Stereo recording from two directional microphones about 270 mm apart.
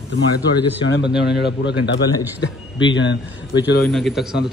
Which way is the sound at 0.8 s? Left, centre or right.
Left.